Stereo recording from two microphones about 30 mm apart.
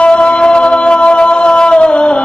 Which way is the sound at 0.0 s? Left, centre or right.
Left.